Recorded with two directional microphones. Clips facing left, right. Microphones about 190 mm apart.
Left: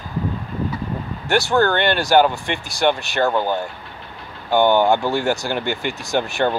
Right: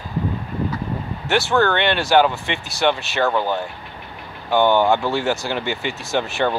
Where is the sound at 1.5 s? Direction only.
35° left (ahead or behind).